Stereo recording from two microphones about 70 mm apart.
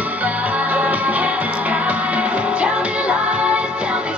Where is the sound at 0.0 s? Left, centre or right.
Right.